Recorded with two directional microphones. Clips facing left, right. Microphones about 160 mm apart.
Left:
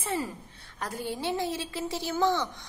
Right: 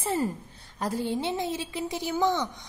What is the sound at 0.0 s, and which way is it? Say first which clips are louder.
A woman's voice: right 4 dB; 40° right (ahead or behind).